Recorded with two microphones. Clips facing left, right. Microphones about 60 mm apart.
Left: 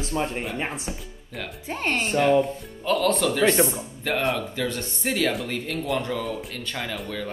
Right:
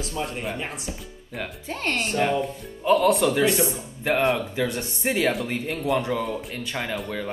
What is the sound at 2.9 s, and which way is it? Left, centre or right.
Speech, centre.